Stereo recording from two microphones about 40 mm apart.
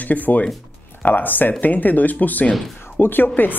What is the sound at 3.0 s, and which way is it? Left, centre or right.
Speech, left.